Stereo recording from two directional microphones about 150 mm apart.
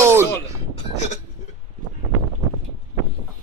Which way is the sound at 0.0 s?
15° right (ahead or behind).